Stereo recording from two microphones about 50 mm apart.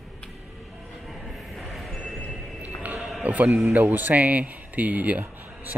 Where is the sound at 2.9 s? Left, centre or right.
Centre.